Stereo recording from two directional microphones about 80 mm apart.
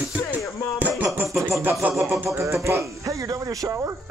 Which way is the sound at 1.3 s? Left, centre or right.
Right.